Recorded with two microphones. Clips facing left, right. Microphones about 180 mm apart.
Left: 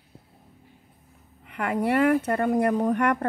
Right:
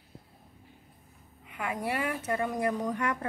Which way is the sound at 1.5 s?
65° left (ahead or behind).